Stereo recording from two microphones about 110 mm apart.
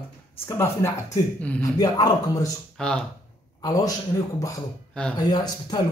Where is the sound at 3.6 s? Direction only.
35° left (ahead or behind).